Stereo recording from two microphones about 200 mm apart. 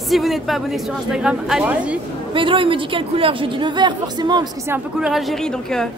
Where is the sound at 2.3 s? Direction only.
25° right (ahead or behind).